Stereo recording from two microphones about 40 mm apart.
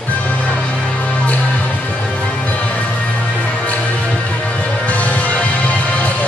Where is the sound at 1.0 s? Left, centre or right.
Left.